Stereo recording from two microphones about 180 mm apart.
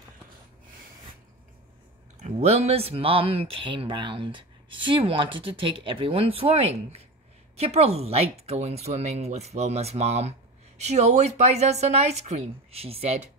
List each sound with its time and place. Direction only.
2.1 s speech: 40° right (ahead or behind)